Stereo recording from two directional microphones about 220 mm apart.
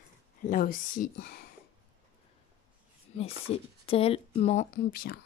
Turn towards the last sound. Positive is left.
turn(degrees=45)  # may be behind; listen again after turning